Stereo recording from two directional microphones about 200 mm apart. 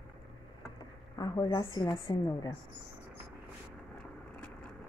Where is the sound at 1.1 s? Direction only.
20° left (ahead or behind).